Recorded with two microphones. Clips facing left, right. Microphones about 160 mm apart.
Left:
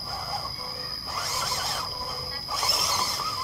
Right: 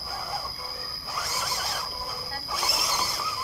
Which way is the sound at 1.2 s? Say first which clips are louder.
Even; centre (ahead or behind).